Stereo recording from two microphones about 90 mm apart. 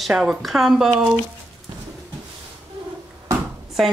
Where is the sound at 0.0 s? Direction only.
Centre (ahead or behind).